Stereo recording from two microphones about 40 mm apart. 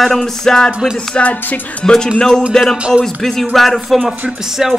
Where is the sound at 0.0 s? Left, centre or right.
Centre.